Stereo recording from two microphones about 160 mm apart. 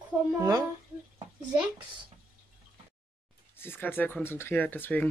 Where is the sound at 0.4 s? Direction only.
25° right (ahead or behind).